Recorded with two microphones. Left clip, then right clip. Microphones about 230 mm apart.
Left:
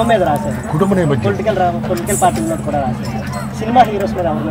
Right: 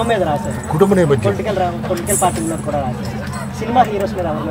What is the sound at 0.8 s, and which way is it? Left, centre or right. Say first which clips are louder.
Speech: right 3 dB; right.